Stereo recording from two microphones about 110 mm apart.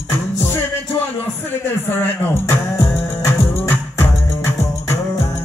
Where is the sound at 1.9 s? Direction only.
20° left (ahead or behind).